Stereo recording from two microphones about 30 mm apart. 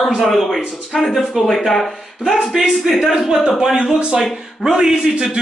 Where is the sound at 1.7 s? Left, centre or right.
Centre.